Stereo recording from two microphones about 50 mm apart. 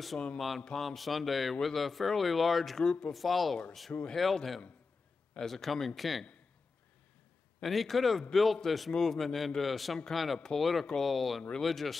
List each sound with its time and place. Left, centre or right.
0.1 s speech: centre
0.7 s speech: centre
2.8 s speech: centre
3.1 s speech: centre
7.6 s speech: centre